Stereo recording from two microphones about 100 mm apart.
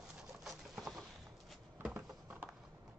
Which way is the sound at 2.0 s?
10° right (ahead or behind).